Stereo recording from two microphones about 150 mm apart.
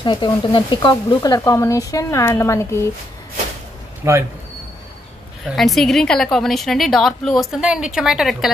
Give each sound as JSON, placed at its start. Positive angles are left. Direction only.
{"t": 0.0, "sound": "speech", "side_deg": 30}
{"t": 4.0, "sound": "speech", "side_deg": -20}
{"t": 5.6, "sound": "a woman's voice", "side_deg": 0}